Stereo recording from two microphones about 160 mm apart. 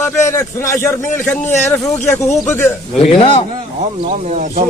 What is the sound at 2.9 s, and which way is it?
Speech, 40° left (ahead or behind).